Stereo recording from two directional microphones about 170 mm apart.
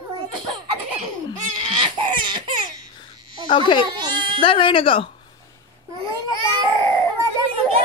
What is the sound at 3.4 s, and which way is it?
Speech, 30° left (ahead or behind).